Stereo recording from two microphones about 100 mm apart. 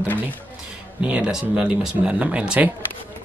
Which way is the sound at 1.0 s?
15° right (ahead or behind).